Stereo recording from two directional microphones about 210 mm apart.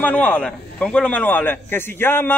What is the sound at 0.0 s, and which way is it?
A man's voice, 10° left (ahead or behind).